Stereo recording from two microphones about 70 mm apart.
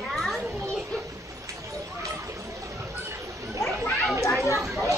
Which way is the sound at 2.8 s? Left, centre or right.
Right.